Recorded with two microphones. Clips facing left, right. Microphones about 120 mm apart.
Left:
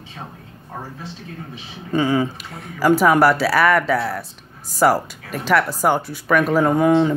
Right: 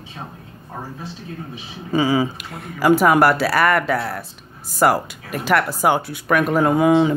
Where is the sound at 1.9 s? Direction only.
5° right (ahead or behind).